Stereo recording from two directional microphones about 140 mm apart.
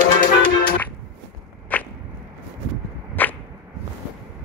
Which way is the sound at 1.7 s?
10° left (ahead or behind).